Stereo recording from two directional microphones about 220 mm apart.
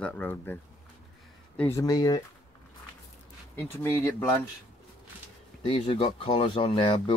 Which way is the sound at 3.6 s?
10° left (ahead or behind).